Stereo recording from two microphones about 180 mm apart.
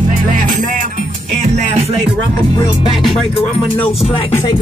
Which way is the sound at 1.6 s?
35° right (ahead or behind).